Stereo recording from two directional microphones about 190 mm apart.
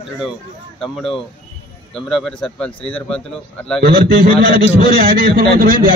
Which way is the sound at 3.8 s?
55° right (ahead or behind).